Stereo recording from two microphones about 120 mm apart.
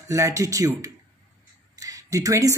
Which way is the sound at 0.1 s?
25° right (ahead or behind).